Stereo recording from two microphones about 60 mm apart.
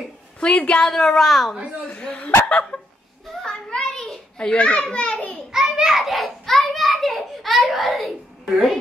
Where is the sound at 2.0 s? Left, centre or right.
Centre.